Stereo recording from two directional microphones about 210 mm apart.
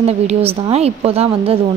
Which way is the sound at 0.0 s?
30° right (ahead or behind).